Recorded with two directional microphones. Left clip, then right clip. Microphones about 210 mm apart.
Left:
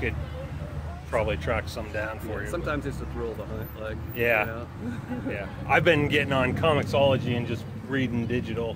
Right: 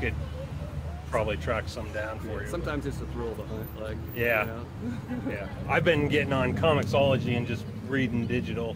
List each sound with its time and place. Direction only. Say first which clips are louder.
1.1 s speech: left 2 dB; 15° left (ahead or behind)
2.5 s speech: left 3 dB; 5° right (ahead or behind)
4.2 s speech: left 2 dB; 20° left (ahead or behind)